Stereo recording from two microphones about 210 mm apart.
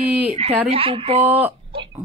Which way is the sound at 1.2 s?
10° right (ahead or behind).